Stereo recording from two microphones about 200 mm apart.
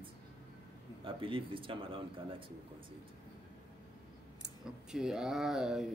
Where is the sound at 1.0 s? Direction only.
25° right (ahead or behind).